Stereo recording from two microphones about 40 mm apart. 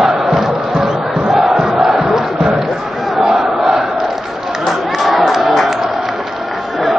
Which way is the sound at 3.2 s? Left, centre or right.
Centre.